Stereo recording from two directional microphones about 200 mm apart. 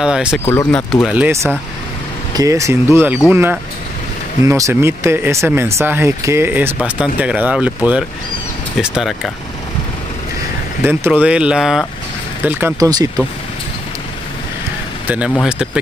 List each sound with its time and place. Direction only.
0.0 s speech: 5° right (ahead or behind)
0.5 s speech: 10° left (ahead or behind)
1.0 s speech: 10° right (ahead or behind)
10.8 s speech: 10° right (ahead or behind)
15.0 s speech: 5° right (ahead or behind)